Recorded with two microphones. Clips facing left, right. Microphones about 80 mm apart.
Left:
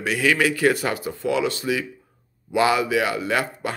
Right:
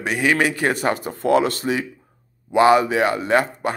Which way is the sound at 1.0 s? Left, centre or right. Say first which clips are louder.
Right 5 dB; right.